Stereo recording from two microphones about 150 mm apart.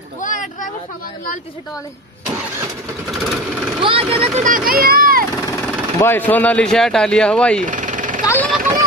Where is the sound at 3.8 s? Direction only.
40° right (ahead or behind).